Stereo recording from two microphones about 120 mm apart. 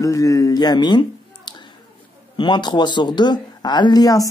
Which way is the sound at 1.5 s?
35° left (ahead or behind).